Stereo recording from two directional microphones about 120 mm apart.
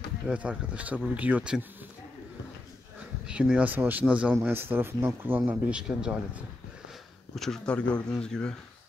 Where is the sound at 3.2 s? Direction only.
10° right (ahead or behind).